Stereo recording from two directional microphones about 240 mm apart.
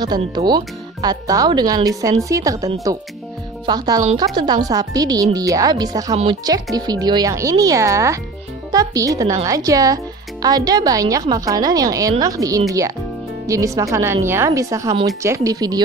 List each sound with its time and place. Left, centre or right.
0.0 s speech: centre